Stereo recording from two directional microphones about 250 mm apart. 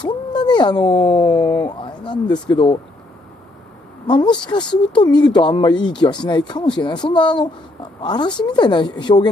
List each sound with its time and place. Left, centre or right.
0.0 s speech: centre
4.1 s speech: centre